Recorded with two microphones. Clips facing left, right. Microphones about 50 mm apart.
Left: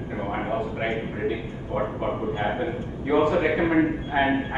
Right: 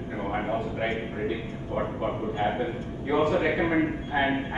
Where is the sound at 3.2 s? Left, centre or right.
Centre.